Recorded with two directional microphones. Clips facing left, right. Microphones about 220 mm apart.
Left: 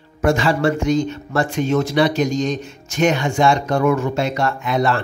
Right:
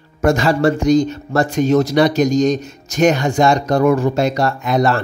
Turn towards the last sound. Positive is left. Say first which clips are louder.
# right 3 dB
turn(degrees=-40)  # may be behind; listen again after turning